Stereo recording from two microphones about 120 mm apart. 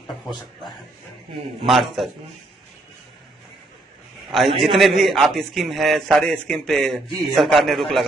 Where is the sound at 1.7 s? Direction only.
Centre (ahead or behind).